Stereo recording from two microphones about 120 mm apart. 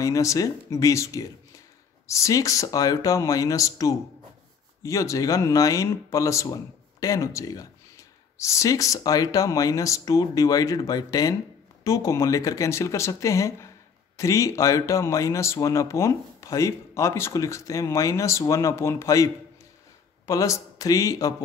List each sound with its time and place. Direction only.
0.0 s speech: 25° left (ahead or behind)